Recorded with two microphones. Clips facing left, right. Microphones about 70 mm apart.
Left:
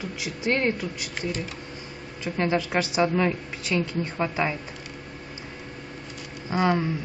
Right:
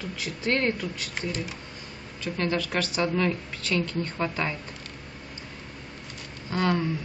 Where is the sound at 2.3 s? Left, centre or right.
Centre.